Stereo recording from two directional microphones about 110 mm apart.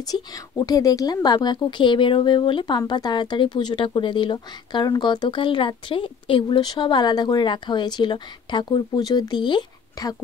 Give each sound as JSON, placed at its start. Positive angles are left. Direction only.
{"t": 0.0, "sound": "a woman's voice", "side_deg": 35}